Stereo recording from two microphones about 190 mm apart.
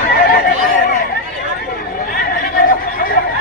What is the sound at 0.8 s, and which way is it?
Chatter, 50° left (ahead or behind).